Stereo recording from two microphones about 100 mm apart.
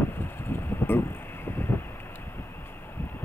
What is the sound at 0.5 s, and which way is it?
Vehicle, 20° left (ahead or behind).